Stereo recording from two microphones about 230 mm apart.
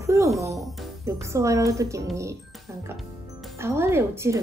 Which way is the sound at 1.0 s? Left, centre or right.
Centre.